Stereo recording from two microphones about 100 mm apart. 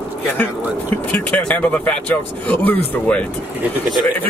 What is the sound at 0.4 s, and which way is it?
Speech, 15° left (ahead or behind).